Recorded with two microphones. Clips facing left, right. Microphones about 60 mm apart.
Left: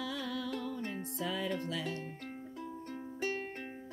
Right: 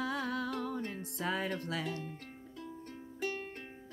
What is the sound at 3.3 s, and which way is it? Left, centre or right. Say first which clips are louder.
Music: left 3 dB; left.